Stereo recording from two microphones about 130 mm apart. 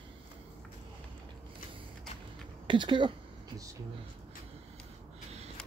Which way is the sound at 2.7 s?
40° right (ahead or behind).